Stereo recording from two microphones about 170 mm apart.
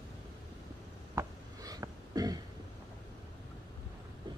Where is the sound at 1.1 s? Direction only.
20° right (ahead or behind).